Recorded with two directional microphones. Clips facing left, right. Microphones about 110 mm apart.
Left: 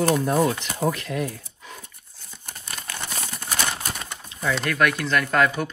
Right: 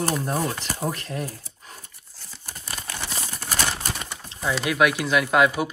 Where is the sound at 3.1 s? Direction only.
5° right (ahead or behind).